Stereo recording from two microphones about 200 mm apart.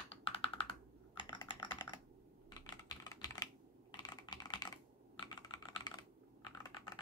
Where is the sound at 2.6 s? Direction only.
20° left (ahead or behind).